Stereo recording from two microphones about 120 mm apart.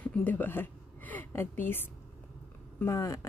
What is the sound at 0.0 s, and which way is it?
A woman's voice, 15° left (ahead or behind).